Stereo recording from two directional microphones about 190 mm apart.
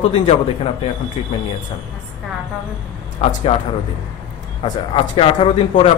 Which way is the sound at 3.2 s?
30° left (ahead or behind).